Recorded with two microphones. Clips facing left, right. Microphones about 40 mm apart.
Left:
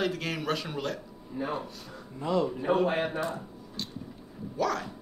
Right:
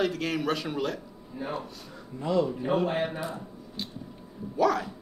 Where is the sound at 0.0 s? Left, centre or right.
Centre.